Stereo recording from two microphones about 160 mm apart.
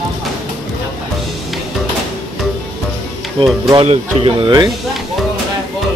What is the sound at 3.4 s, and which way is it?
Speech, 30° right (ahead or behind).